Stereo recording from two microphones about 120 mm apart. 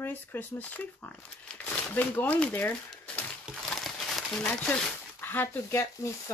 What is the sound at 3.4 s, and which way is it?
Crumpling, centre (ahead or behind).